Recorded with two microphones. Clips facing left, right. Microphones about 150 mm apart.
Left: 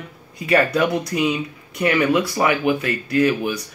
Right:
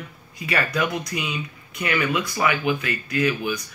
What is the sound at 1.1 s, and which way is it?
Speech, 40° left (ahead or behind).